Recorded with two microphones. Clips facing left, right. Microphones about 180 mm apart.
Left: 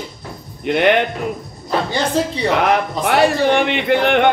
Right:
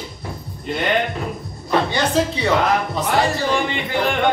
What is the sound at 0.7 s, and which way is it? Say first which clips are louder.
Speech: left 7 dB; 70° left (ahead or behind).